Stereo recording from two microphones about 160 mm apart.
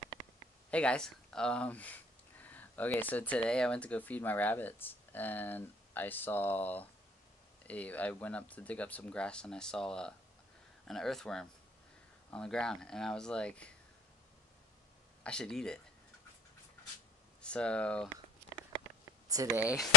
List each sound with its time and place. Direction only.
0.7 s speech: 5° left (ahead or behind)
15.2 s speech: 5° left (ahead or behind)
17.4 s speech: 5° left (ahead or behind)
19.2 s speech: 20° right (ahead or behind)